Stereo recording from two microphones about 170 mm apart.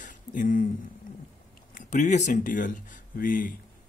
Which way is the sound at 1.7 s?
50° left (ahead or behind).